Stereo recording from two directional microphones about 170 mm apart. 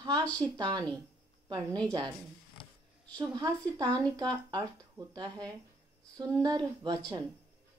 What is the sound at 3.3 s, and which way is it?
Speech, 25° right (ahead or behind).